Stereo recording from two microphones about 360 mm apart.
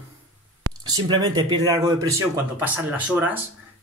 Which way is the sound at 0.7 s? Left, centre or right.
Right.